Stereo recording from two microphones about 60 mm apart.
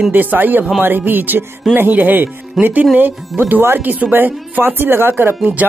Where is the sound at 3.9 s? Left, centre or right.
Right.